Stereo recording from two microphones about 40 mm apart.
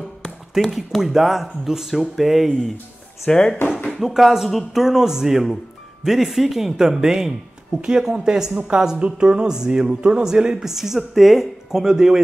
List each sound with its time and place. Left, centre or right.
0.6 s speech: centre
3.3 s speech: left
4.0 s speech: centre